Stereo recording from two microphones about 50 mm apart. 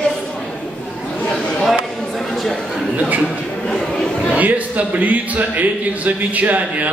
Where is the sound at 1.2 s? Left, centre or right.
Left.